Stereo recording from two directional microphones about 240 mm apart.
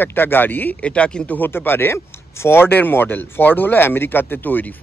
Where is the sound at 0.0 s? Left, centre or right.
Centre.